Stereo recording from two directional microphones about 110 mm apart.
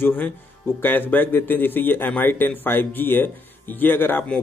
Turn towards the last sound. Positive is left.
turn(degrees=15)  # may be behind; listen again after turning